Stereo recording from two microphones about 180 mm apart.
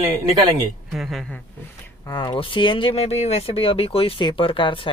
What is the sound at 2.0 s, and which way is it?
Speech, 25° left (ahead or behind).